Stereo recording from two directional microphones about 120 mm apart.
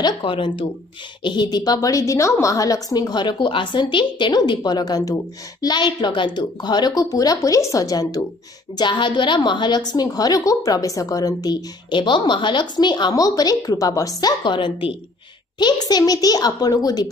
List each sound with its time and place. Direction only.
0.0 s a woman's voice: 45° left (ahead or behind)
11.9 s a woman's voice: 40° left (ahead or behind)
15.6 s a woman's voice: 35° left (ahead or behind)